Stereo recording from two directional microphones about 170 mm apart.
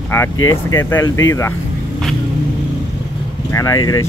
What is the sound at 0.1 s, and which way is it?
Speech, 15° left (ahead or behind).